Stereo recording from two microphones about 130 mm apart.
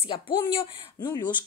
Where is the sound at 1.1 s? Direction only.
30° left (ahead or behind).